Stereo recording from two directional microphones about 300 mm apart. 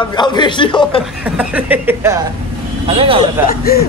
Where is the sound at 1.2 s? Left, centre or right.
Centre.